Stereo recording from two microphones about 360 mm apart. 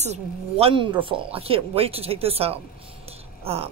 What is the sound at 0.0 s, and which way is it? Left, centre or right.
Speech, centre.